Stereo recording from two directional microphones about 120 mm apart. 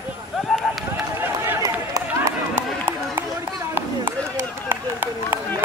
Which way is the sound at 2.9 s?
15° right (ahead or behind).